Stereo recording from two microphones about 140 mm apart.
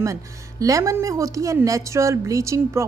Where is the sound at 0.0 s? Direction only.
25° right (ahead or behind).